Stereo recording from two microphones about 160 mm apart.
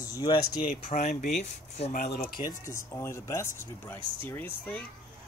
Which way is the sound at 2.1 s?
35° left (ahead or behind).